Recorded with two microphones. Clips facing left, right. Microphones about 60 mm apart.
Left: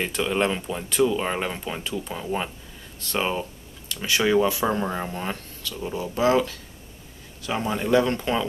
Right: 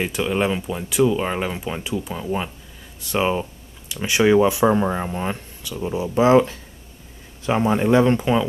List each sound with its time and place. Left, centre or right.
0.0 s speech: centre; by 8.3 s right